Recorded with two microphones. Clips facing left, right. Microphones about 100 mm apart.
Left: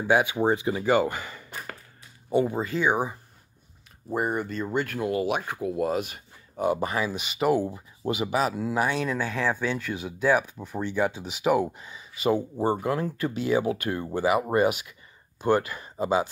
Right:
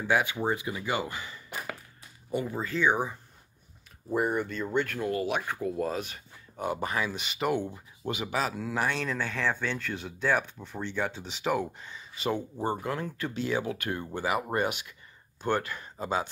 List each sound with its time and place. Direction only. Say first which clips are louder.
0.0 s speech: left 5 dB; 15° left (ahead or behind)
0.5 s speech: left 7 dB; 30° left (ahead or behind); by 1.4 s 50° left (ahead or behind)
2.5 s speech: left 2 dB; 15° left (ahead or behind)
4.3 s speech: left 1 dB; 35° left (ahead or behind)
4.6 s speech: left 2 dB; 5° left (ahead or behind)